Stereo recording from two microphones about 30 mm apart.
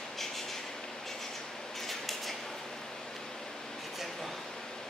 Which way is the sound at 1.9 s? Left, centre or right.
Centre.